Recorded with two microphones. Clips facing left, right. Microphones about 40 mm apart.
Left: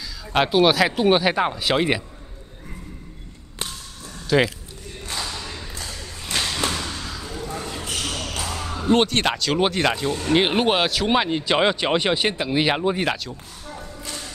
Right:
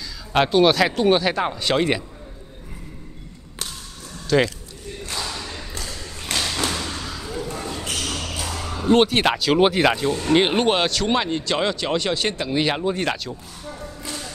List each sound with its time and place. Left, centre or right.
0.3 s speech: centre
4.3 s speech: centre
5.1 s a sound: centre
6.3 s thump: centre
7.0 s a sound: centre
8.5 s basketball bounce: centre
8.8 s speech: centre